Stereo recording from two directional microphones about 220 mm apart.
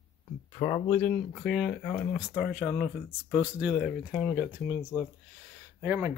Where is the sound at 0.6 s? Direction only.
15° left (ahead or behind); by 4.7 s 5° right (ahead or behind).